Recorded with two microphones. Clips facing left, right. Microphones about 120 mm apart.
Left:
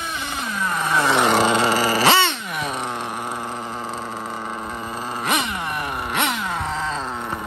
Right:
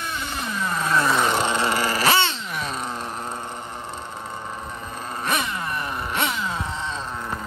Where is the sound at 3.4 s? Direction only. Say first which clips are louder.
Left 5 dB; 35° left (ahead or behind).